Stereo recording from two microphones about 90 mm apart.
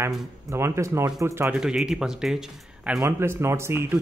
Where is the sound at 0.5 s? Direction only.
30° right (ahead or behind).